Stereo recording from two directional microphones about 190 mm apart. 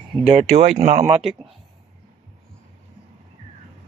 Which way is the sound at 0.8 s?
35° right (ahead or behind).